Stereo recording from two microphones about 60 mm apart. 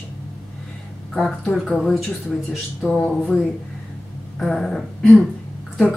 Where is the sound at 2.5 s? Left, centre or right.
Centre.